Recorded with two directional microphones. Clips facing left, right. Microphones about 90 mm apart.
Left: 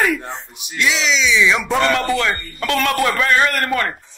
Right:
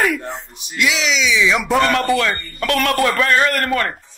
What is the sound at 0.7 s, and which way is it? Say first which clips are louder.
Music: even; 35° left (ahead or behind).